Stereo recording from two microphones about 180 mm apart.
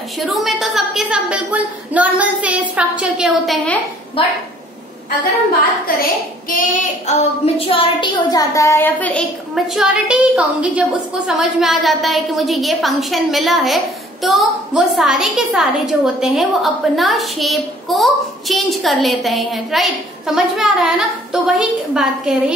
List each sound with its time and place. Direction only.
0.2 s a woman's voice: centre (ahead or behind)
4.2 s a woman's voice: 30° left (ahead or behind)
6.5 s child singing: 50° left (ahead or behind)
7.4 s a woman's voice: 30° left (ahead or behind); by 9.2 s 10° left (ahead or behind)
9.8 s a woman's voice: 5° right (ahead or behind)